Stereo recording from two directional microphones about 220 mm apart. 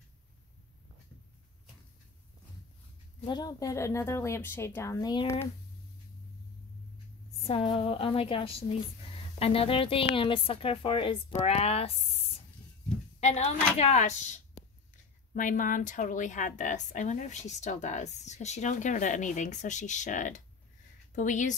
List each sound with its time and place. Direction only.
3.3 s a woman's voice: 20° left (ahead or behind)
7.4 s a woman's voice: 25° left (ahead or behind)
13.2 s a woman's voice: 30° left (ahead or behind)